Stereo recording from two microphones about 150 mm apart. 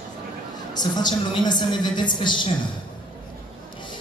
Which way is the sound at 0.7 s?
30° left (ahead or behind).